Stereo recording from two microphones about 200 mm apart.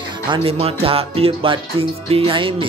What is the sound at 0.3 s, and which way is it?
Speech, 30° right (ahead or behind).